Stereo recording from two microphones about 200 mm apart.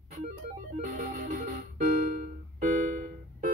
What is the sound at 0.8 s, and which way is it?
Music, 40° right (ahead or behind).